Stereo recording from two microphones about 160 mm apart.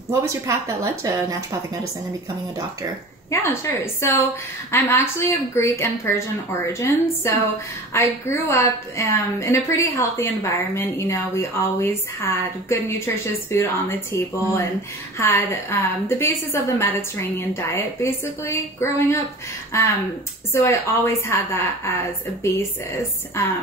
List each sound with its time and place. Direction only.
0.1 s a woman's voice: 20° right (ahead or behind)
3.3 s a woman's voice: 15° left (ahead or behind)